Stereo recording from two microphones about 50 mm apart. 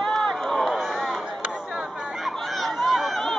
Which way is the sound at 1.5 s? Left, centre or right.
Centre.